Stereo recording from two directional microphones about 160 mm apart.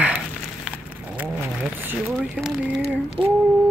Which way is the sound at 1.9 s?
5° right (ahead or behind).